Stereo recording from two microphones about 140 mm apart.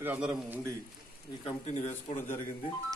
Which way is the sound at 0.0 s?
10° right (ahead or behind).